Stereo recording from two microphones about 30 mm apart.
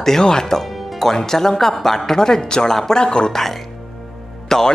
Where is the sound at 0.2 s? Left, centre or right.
Left.